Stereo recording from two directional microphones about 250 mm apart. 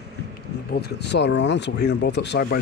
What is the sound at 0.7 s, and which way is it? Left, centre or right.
Speech, left.